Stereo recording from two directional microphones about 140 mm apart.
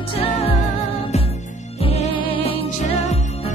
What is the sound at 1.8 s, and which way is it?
Music, 45° left (ahead or behind).